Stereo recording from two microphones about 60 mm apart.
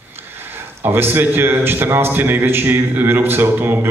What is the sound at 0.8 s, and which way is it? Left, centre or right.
Speech, right.